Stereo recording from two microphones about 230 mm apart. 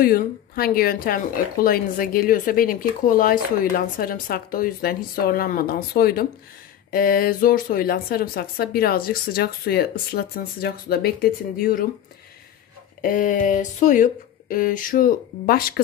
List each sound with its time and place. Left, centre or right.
0.0 s speech: left
13.0 s speech: left